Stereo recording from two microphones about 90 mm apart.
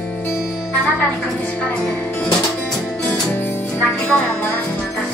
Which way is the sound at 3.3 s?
25° left (ahead or behind).